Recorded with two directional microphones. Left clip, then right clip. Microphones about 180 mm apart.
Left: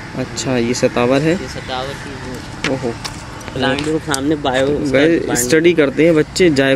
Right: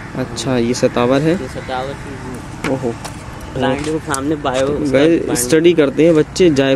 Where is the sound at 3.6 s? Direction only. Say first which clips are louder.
Left 1 dB; 45° left (ahead or behind).